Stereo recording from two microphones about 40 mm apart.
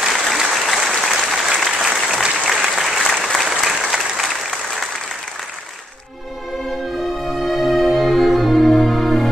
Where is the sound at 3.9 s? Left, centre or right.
Centre.